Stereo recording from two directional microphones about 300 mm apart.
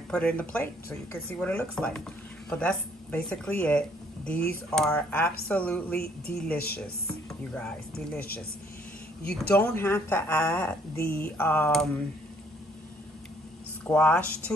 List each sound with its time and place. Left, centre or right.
0.1 s speech: centre
5.9 s speech: left
6.3 s speech: centre
9.2 s a woman's voice: centre
13.8 s speech: centre